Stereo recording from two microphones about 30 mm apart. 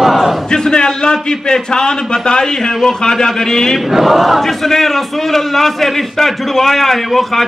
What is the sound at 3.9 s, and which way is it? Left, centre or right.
Speech, centre.